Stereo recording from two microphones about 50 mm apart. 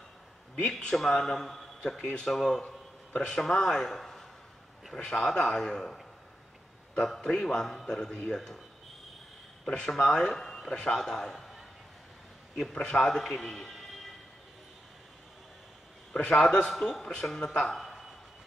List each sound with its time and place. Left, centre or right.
0.6 s a man's voice: centre
2.2 s a man's voice: centre
9.8 s a man's voice: centre
12.7 s a man's voice: centre
16.1 s a man's voice: centre
17.8 s a sound: centre